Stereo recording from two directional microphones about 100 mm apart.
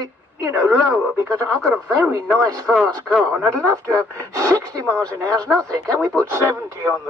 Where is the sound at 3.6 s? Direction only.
30° right (ahead or behind).